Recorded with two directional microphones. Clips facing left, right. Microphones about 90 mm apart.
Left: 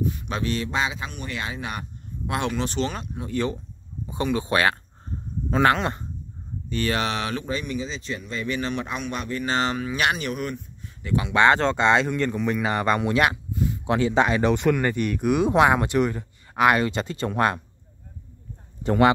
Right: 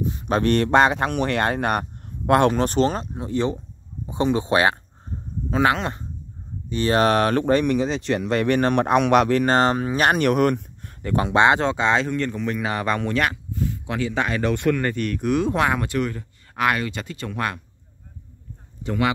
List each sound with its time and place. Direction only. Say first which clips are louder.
0.0 s a sound: even; 30° right (ahead or behind)
0.3 s speech: right 13 dB; 55° right (ahead or behind); by 4.7 s 25° right (ahead or behind)
5.5 s speech: even; 5° right (ahead or behind)
6.9 s speech: right 10 dB; 45° right (ahead or behind); by 9.5 s 75° right (ahead or behind)
9.5 s speech: right 6 dB; 45° right (ahead or behind)
10.1 s speech: right 10 dB; 60° right (ahead or behind); by 11.3 s 45° right (ahead or behind)
11.3 s speech: right 1 dB; 15° right (ahead or behind); by 13.7 s 15° left (ahead or behind)
13.8 s speech: left 5 dB; 25° left (ahead or behind)
18.8 s speech: left 4 dB; 40° left (ahead or behind)